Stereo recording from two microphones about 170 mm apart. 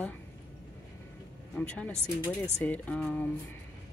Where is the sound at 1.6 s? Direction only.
10° left (ahead or behind).